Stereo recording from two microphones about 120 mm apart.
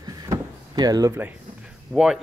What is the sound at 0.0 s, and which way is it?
Power windows, 30° right (ahead or behind).